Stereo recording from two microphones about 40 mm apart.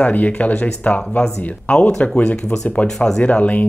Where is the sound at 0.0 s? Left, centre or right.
Left.